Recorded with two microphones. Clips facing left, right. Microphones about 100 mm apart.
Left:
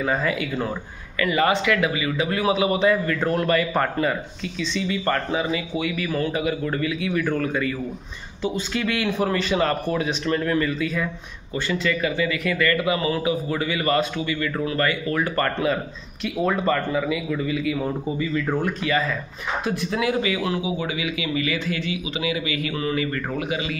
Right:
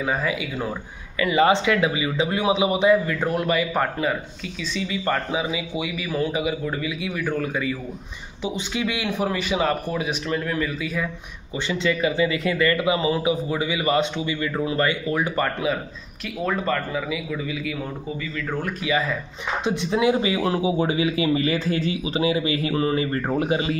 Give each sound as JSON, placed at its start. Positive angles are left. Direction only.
{"t": 0.0, "sound": "speech", "side_deg": -5}
{"t": 1.2, "sound": "speech", "side_deg": -20}
{"t": 11.5, "sound": "speech", "side_deg": -20}
{"t": 18.9, "sound": "speech", "side_deg": -10}
{"t": 19.6, "sound": "a man's voice", "side_deg": -25}